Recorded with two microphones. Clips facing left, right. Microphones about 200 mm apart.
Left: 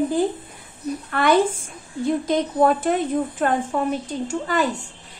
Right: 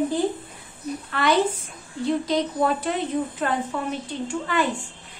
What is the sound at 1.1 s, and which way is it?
A woman's voice, 50° left (ahead or behind).